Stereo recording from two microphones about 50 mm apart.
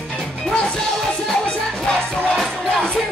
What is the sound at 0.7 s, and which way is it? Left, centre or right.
Music, centre.